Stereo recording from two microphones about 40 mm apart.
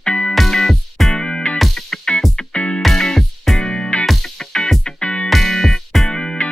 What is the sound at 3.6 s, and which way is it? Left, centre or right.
Music, left.